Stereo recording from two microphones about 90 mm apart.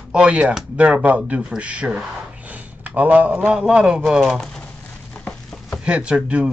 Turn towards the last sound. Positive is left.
turn(degrees=-10)  # may be behind; listen again after turning